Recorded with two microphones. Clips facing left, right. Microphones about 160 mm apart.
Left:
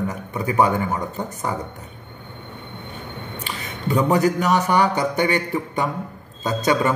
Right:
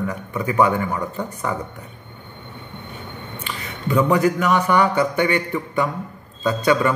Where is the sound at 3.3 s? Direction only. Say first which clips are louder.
Right 1 dB; 35° left (ahead or behind).